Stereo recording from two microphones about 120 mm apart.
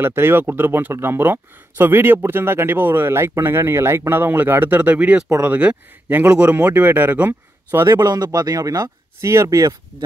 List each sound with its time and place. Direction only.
0.0 s speech: 20° right (ahead or behind)
8.0 s speech: 35° right (ahead or behind)